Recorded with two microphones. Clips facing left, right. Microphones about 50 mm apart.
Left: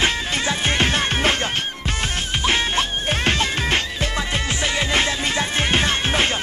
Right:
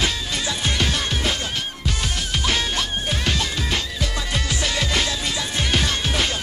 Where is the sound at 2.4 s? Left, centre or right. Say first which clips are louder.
Left 4 dB; left.